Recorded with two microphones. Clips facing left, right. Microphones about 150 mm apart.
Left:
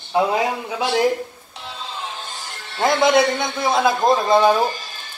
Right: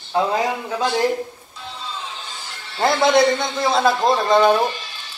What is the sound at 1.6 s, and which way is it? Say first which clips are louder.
Music: even; 65° left (ahead or behind).